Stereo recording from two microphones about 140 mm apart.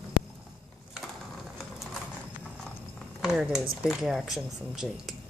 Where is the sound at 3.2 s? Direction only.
5° right (ahead or behind).